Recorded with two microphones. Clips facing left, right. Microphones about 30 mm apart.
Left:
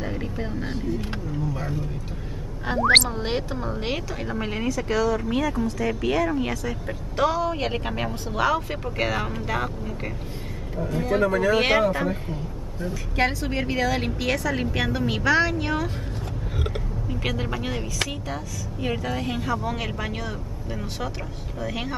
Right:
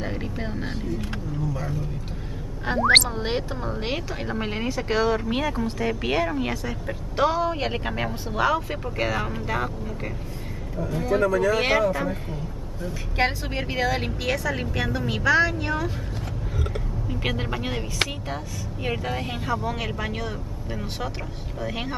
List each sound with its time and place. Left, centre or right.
0.0 s vehicle: centre
1.1 s vehicle: centre
2.6 s speech: centre
4.6 s a woman's voice: right; by 10.1 s centre
10.8 s speech: centre
11.2 s speech: left
12.0 s speech: centre
13.1 s a woman's voice: centre
17.3 s a woman's voice: centre